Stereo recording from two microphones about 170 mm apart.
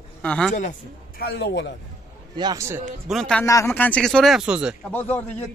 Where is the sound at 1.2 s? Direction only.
80° left.